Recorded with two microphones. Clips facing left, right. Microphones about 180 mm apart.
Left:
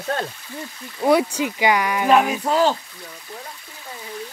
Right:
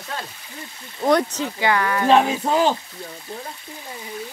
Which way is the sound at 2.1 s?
25° right (ahead or behind).